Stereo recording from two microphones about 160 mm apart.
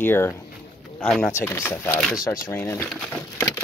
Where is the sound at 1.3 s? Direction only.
15° left (ahead or behind).